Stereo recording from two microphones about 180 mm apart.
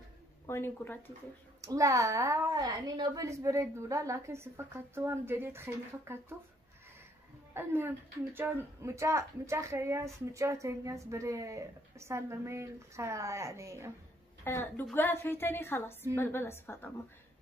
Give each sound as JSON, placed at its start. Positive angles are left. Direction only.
{"t": 0.5, "sound": "a woman's voice", "side_deg": 15}
{"t": 1.6, "sound": "speech", "side_deg": -20}
{"t": 7.5, "sound": "speech", "side_deg": -10}
{"t": 14.4, "sound": "a woman's voice", "side_deg": 10}